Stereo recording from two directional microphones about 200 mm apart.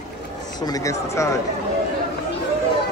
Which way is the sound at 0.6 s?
15° left (ahead or behind).